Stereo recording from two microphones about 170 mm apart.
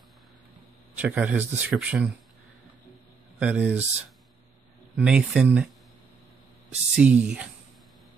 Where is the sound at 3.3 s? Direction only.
10° right (ahead or behind).